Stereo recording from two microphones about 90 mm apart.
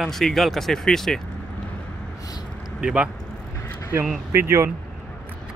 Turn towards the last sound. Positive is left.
turn(degrees=-30)  # may be behind; listen again after turning